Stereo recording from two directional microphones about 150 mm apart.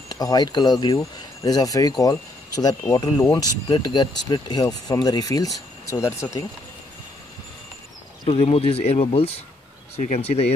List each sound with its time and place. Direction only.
0.1 s speech: 25° left (ahead or behind)
8.3 s speech: 40° left (ahead or behind)